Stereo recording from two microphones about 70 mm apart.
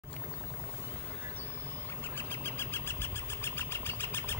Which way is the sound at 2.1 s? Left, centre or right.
Left.